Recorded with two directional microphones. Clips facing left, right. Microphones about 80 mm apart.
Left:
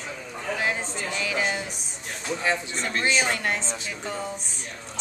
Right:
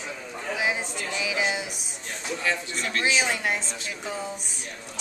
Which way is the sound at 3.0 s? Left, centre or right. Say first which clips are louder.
Left 1 dB; centre.